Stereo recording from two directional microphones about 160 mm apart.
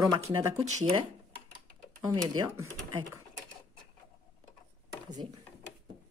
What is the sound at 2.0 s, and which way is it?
Speech, 20° right (ahead or behind).